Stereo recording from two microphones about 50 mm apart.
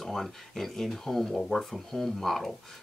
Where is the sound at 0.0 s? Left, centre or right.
Centre.